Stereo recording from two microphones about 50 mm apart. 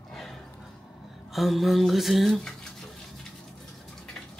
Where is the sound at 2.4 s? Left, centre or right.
Centre.